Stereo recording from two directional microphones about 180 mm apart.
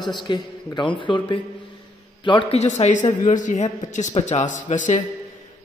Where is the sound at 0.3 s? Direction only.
25° left (ahead or behind).